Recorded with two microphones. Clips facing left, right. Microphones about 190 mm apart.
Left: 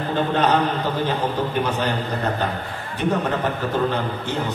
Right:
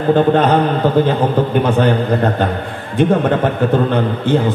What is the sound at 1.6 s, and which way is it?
A man's voice, 55° right (ahead or behind).